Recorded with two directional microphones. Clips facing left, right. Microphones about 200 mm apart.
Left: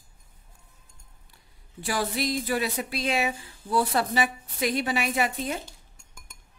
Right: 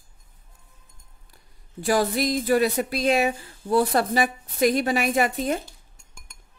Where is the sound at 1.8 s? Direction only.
45° right (ahead or behind).